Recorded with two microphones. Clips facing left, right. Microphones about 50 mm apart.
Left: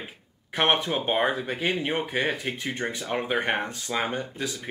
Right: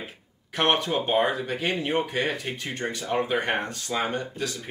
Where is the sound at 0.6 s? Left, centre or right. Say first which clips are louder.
Even; centre.